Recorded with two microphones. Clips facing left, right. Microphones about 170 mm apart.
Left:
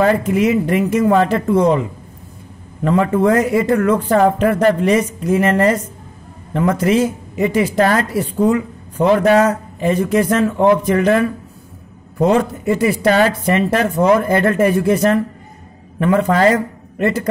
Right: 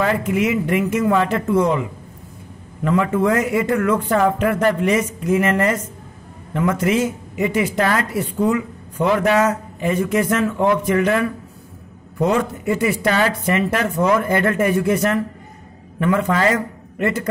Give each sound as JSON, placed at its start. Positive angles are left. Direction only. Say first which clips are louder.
{"t": 0.0, "sound": "a woman's voice", "louder": "left 4 dB", "side_deg": 35}